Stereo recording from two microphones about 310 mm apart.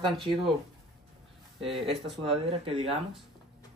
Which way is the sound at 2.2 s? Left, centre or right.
Centre.